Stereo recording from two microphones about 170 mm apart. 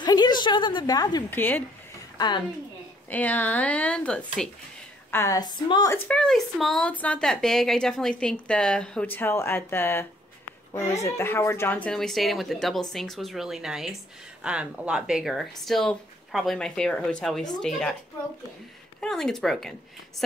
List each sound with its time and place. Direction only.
0.0 s a sound: 25° left (ahead or behind)
1.3 s speech: 10° left (ahead or behind)
2.1 s a woman's voice: 25° left (ahead or behind)
3.1 s speech: 10° left (ahead or behind)
5.1 s speech: 20° left (ahead or behind)
5.9 s speech: 5° left (ahead or behind)
11.1 s speech: 15° left (ahead or behind)
18.9 s speech: 5° left (ahead or behind)